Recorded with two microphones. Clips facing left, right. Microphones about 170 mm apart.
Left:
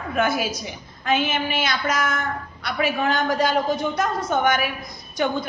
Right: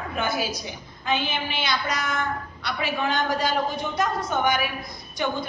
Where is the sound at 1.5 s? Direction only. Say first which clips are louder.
Left 3 dB; 50° left (ahead or behind).